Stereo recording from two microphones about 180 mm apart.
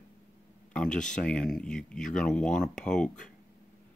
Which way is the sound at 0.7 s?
5° left (ahead or behind).